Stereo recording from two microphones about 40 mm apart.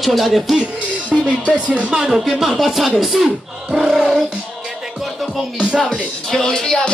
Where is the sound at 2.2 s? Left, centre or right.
Centre.